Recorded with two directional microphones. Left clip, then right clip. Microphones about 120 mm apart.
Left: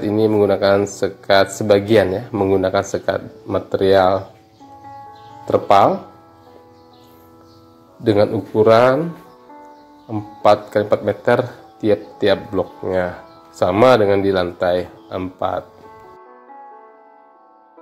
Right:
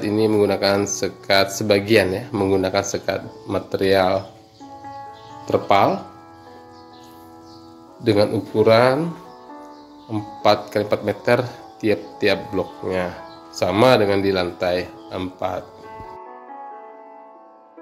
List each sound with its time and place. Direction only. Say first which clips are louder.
0.0 s speech: left 2 dB; 25° left (ahead or behind)
2.8 s speech: left 3 dB; 35° left (ahead or behind)
3.4 s speech: left 4 dB; 25° left (ahead or behind)
5.5 s speech: left 4 dB; 30° left (ahead or behind)
8.0 s speech: left 2 dB; 25° left (ahead or behind)
10.0 s speech: left 4 dB; 20° left (ahead or behind)